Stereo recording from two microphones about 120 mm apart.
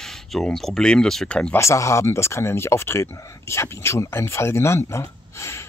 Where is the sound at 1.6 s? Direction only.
25° left (ahead or behind).